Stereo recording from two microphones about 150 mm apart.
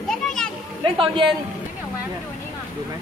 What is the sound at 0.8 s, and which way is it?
Speech, 35° right (ahead or behind).